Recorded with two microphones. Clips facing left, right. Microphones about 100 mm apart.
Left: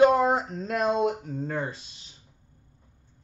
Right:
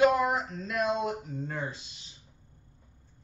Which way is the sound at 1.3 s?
50° left (ahead or behind).